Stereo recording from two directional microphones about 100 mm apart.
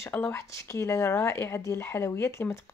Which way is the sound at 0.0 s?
25° left (ahead or behind).